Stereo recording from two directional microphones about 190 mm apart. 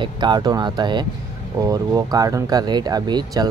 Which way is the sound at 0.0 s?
25° right (ahead or behind).